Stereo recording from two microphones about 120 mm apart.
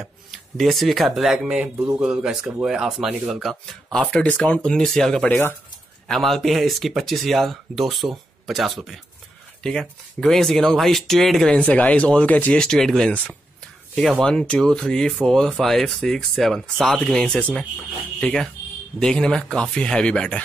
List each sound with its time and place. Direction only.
0.0 s speech: centre (ahead or behind)
14.5 s speech: 5° left (ahead or behind)